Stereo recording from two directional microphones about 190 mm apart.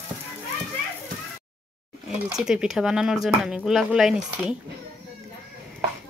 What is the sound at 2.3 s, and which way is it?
Speech, 5° right (ahead or behind).